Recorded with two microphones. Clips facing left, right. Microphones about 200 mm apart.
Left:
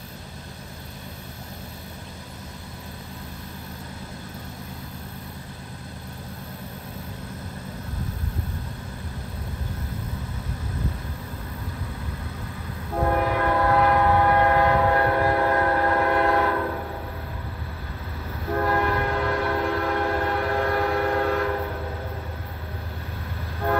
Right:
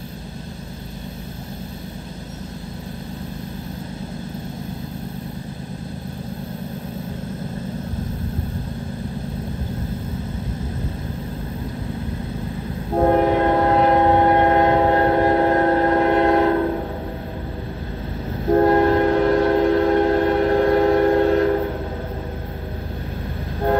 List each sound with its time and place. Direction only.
12.9 s train: 30° right (ahead or behind)
18.4 s train: 35° right (ahead or behind)